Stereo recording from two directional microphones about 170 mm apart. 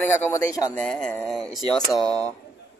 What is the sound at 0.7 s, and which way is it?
Speech, 5° left (ahead or behind).